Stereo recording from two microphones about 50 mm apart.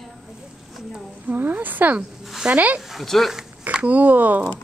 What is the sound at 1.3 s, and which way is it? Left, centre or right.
Speech, right.